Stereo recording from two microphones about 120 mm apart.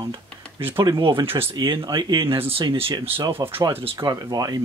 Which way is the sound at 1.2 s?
20° right (ahead or behind).